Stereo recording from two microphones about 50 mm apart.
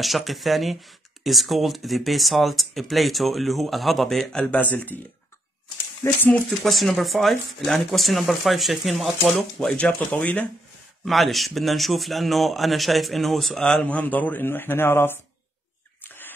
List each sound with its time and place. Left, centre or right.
0.0 s speech: centre
4.4 s speech: left
6.0 s speech: left
6.6 s speech: centre
9.8 s speech: left
11.1 s speech: centre
13.8 s speech: left
14.4 s speech: left
16.0 s a sound: left